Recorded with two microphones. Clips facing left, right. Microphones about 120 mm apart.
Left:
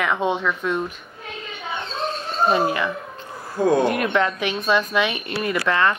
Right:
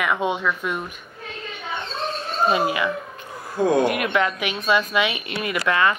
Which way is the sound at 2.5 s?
10° right (ahead or behind).